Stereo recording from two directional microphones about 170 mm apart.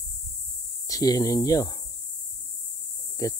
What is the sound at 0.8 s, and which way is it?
Speech, 20° left (ahead or behind).